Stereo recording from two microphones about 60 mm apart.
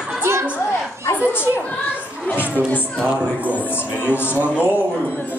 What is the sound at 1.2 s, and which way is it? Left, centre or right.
Speech, right.